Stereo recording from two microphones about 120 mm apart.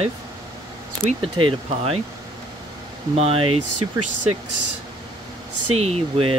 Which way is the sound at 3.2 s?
55° right (ahead or behind).